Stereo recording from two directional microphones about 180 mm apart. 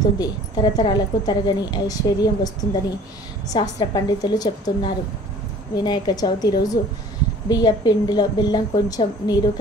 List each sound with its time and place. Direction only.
0.0 s speech: 20° left (ahead or behind)